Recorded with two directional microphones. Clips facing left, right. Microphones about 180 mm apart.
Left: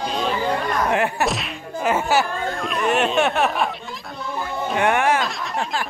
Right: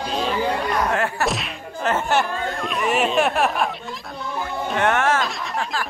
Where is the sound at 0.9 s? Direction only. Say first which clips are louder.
Left 2 dB; 15° left (ahead or behind).